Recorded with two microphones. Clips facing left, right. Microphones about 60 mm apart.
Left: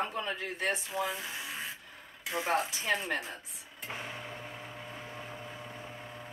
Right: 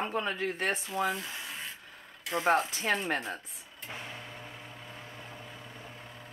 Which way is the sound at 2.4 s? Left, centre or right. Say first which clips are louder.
Right 4 dB; right.